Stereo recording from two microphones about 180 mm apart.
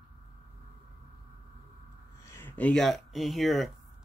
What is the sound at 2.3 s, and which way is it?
Speech, 10° left (ahead or behind).